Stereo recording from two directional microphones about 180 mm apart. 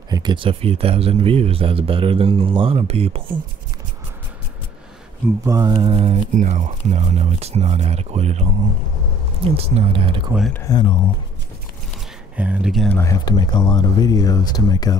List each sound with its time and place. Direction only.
0.1 s speech: 25° right (ahead or behind)
5.4 s speech: 20° right (ahead or behind)
6.1 s speech: 45° right (ahead or behind)
10.7 s speech: 25° left (ahead or behind)
12.4 s speech: 5° right (ahead or behind)
12.9 s speech: 15° left (ahead or behind)